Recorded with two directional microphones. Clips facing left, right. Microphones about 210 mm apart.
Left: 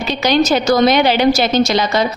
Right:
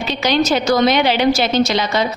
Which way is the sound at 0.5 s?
40° left (ahead or behind).